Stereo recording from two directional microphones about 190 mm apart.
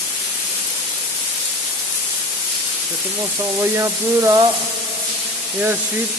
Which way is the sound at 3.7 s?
15° right (ahead or behind).